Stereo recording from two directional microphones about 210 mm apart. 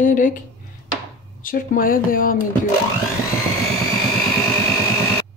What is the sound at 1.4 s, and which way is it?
Speech, 40° left (ahead or behind).